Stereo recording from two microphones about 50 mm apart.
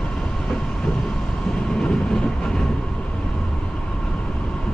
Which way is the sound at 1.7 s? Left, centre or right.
Centre.